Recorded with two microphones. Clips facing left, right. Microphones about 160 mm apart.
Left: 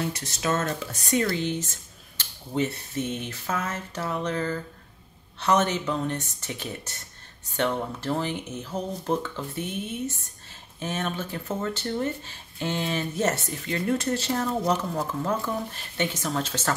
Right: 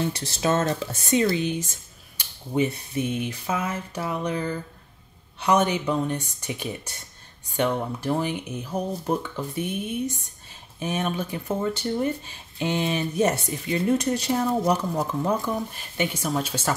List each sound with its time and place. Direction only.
0.0 s speech: 30° right (ahead or behind); by 16.7 s 10° right (ahead or behind)